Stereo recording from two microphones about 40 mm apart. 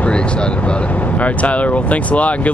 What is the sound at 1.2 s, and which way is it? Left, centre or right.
Speech, left.